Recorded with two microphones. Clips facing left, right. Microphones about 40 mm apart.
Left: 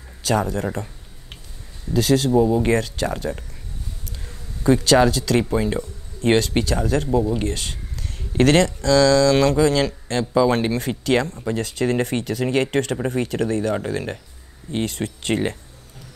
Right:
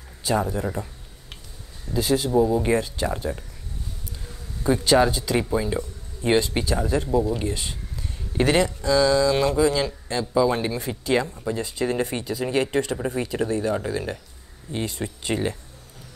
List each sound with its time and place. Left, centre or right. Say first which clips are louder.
0.2 s speech: left 2 dB; left
2.0 s speech: left 3 dB; left
4.6 s speech: left 3 dB; left
5.5 s speech: left 3 dB; left